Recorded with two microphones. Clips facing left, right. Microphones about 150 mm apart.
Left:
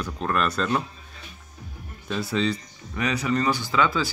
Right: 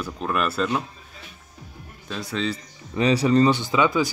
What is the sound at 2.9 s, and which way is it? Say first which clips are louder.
Speech: right 7 dB; 30° right (ahead or behind).